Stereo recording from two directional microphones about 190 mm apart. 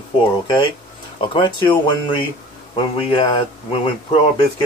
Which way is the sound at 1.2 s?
25° left (ahead or behind).